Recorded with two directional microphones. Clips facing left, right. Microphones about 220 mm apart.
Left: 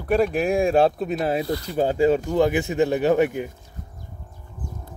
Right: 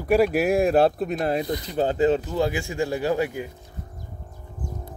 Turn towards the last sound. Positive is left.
turn(degrees=20)  # may be behind; listen again after turning